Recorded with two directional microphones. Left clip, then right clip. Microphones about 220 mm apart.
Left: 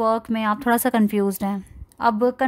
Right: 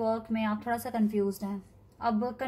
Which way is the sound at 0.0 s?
50° left (ahead or behind).